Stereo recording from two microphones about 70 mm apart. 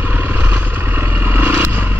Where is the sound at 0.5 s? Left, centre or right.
Right.